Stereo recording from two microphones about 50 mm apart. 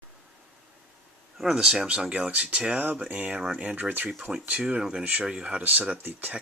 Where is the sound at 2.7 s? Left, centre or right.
Right.